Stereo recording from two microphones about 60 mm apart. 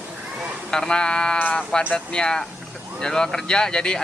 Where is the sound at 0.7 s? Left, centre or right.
Centre.